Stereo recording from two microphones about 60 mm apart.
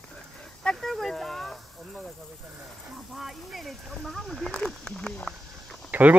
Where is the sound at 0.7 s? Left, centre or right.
Centre.